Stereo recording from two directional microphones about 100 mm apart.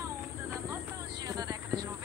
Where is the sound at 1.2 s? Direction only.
40° right (ahead or behind).